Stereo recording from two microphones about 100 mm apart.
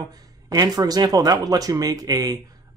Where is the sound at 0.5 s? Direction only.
40° right (ahead or behind).